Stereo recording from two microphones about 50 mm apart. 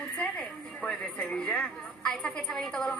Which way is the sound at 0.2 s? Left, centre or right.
Left.